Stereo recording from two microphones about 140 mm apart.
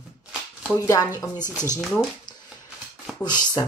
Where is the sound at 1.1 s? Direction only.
15° right (ahead or behind).